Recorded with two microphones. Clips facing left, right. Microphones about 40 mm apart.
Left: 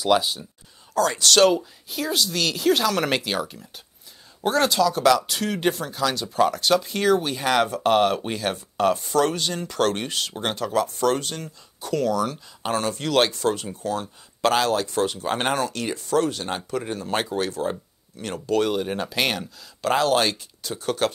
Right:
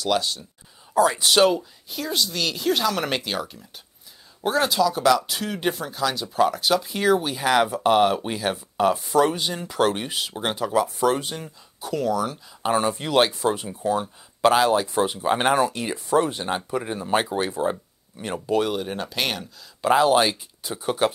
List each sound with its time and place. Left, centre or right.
0.0 s speech: centre
0.9 s speech: centre
1.5 s speech: centre
18.6 s speech: centre
19.8 s speech: centre